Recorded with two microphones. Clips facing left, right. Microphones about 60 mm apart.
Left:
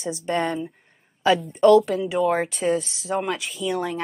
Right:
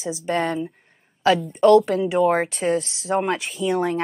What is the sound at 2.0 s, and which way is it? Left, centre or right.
Speech, centre.